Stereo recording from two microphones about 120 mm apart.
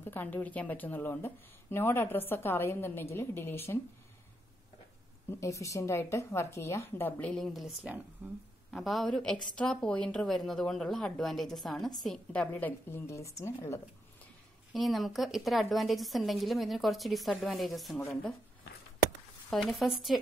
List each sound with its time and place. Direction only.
0.0 s speech: 15° left (ahead or behind)
5.4 s a woman's voice: 25° left (ahead or behind)
14.7 s a woman's voice: centre (ahead or behind)
19.5 s a woman's voice: centre (ahead or behind)